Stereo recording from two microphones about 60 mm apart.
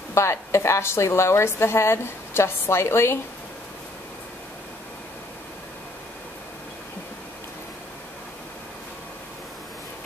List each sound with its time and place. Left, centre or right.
0.1 s a woman's voice: left